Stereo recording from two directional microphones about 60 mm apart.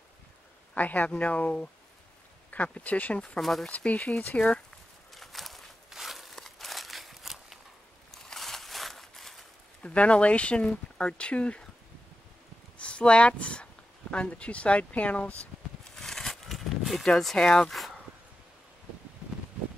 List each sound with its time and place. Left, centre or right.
0.7 s speech: left
3.2 s speech: centre
3.6 s speech: left
5.1 s a sound: centre
9.8 s speech: centre
12.7 s speech: centre
15.8 s a sound: centre
17.2 s speech: centre
17.7 s a sound: centre